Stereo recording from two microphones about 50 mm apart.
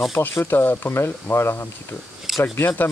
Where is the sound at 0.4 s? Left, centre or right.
Left.